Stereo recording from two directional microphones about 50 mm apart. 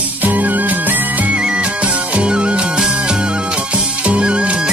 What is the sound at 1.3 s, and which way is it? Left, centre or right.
Music, centre.